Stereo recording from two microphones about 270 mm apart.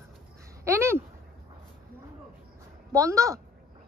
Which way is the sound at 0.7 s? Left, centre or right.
Centre.